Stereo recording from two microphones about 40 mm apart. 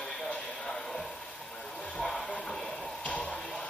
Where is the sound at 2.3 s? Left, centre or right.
Centre.